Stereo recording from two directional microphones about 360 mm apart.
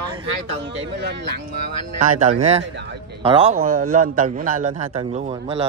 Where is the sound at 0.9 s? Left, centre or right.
Right.